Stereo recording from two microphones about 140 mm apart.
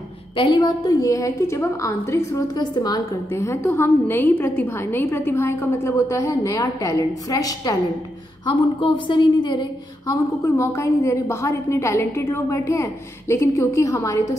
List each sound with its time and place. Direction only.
0.4 s a woman's voice: 30° left (ahead or behind)